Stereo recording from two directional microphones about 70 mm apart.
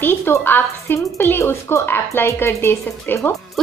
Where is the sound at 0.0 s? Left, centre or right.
Left.